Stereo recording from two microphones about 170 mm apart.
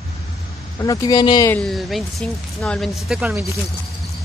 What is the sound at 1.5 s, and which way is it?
Speech, 5° left (ahead or behind).